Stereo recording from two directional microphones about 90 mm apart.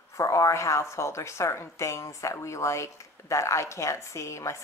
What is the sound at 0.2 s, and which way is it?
A woman's voice, 35° left (ahead or behind).